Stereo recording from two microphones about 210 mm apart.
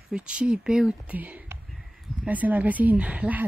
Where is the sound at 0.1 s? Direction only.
5° right (ahead or behind).